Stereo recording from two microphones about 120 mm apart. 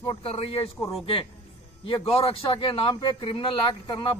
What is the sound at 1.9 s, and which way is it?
A man's voice, 50° left (ahead or behind).